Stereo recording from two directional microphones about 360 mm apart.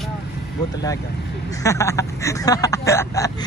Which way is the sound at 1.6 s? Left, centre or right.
Centre.